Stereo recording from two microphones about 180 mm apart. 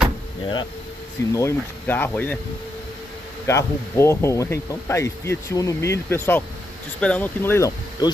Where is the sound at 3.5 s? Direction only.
15° left (ahead or behind).